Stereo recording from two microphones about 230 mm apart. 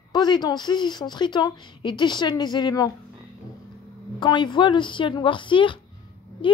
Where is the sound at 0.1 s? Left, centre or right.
Centre.